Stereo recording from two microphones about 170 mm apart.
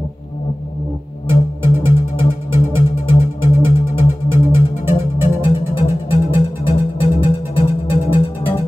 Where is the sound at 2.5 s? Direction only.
30° left (ahead or behind).